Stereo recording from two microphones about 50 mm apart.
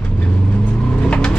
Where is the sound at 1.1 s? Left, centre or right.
Left.